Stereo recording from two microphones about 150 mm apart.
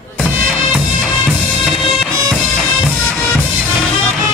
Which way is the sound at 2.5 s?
5° left (ahead or behind).